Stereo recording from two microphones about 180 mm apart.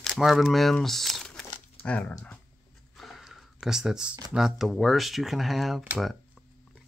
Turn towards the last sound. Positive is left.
turn(degrees=-5)  # may be behind; listen again after turning